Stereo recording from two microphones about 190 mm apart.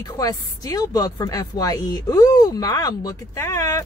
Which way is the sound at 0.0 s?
20° left (ahead or behind).